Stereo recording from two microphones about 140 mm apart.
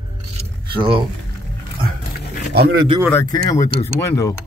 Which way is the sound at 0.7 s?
40° right (ahead or behind).